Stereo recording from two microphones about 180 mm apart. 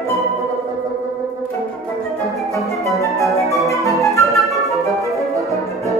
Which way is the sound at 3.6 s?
15° left (ahead or behind).